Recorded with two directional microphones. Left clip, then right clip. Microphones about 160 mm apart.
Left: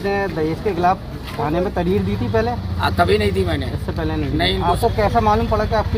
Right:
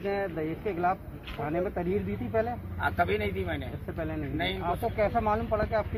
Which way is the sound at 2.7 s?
15° left (ahead or behind).